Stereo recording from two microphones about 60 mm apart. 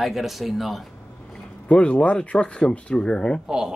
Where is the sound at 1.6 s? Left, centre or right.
Centre.